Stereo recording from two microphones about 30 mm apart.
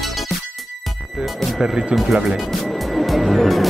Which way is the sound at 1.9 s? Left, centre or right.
Right.